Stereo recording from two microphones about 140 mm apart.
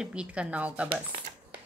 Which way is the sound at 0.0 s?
5° right (ahead or behind).